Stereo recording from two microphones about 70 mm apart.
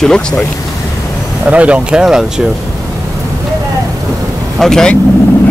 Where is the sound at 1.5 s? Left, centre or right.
Centre.